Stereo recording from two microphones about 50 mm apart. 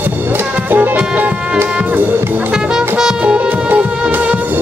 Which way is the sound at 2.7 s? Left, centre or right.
Centre.